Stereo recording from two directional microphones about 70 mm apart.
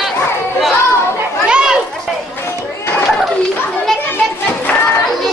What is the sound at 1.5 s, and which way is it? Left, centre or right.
Chatter, centre.